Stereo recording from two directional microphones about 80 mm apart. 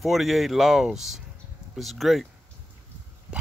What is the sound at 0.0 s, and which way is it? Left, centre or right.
Speech, centre.